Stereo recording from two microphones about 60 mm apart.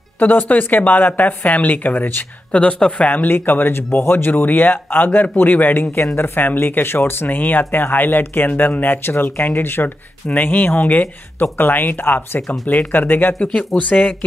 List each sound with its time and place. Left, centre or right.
0.2 s a woman's voice: left
2.5 s a woman's voice: left